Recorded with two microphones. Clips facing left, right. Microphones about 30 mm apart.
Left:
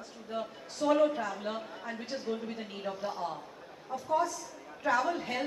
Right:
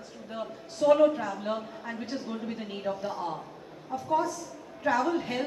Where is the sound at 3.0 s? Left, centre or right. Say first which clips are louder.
Right 2 dB; centre.